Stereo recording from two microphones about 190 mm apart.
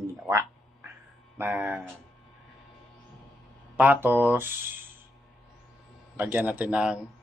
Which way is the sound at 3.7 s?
10° right (ahead or behind).